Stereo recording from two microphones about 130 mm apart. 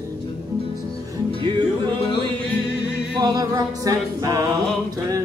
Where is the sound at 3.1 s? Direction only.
30° right (ahead or behind).